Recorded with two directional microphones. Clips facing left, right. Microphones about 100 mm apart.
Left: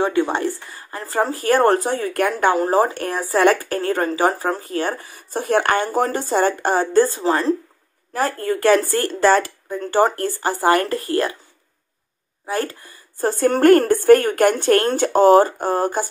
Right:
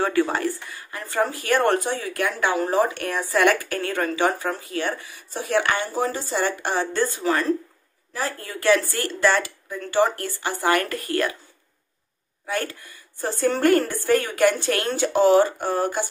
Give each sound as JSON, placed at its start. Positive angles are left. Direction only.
{"t": 0.0, "sound": "speech", "side_deg": 20}
{"t": 0.7, "sound": "speech", "side_deg": 35}
{"t": 8.1, "sound": "speech", "side_deg": 50}
{"t": 12.4, "sound": "speech", "side_deg": 35}
{"t": 13.3, "sound": "speech", "side_deg": 50}